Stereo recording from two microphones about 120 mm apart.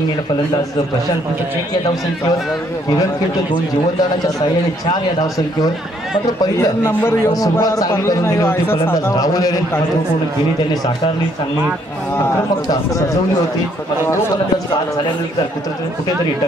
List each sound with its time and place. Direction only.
6.5 s a man's voice: 25° left (ahead or behind)
6.9 s a man's voice: 15° left (ahead or behind)
7.5 s a man's voice: 30° left (ahead or behind)
8.9 s speech: 30° left (ahead or behind)